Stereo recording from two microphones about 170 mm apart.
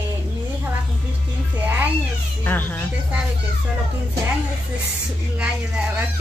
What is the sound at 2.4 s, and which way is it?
Speech, 10° left (ahead or behind).